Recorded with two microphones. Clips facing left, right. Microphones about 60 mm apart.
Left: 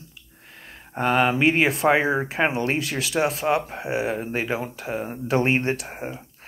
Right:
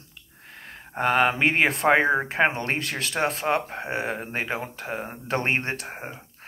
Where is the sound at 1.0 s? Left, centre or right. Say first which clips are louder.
Left 1 dB; right.